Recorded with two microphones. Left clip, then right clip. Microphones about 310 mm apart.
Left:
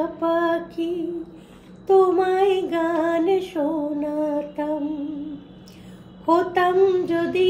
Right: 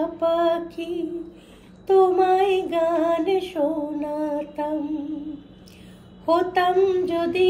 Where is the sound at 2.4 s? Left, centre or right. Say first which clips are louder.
Left 1 dB; centre.